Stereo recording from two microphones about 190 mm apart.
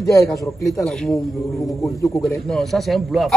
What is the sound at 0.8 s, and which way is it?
Speech, centre (ahead or behind).